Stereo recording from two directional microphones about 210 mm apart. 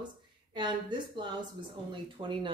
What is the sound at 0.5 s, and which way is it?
A woman's voice, 20° right (ahead or behind).